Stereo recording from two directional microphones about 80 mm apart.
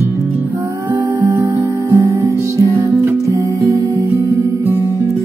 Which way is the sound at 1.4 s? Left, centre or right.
Right.